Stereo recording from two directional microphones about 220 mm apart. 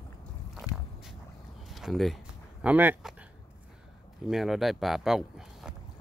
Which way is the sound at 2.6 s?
10° right (ahead or behind).